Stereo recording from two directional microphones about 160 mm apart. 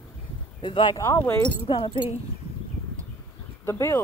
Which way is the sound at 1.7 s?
30° left (ahead or behind).